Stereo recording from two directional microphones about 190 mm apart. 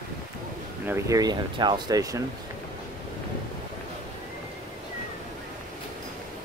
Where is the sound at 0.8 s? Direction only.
15° right (ahead or behind).